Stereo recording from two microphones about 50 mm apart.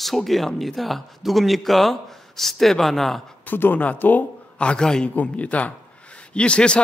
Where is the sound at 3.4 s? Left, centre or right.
Left.